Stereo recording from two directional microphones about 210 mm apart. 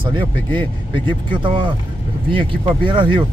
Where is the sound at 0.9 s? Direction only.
25° right (ahead or behind).